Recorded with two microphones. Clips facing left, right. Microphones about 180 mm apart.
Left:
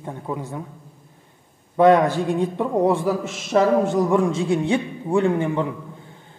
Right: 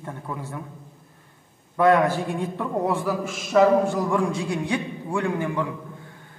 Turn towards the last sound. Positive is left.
turn(degrees=25)  # may be behind; listen again after turning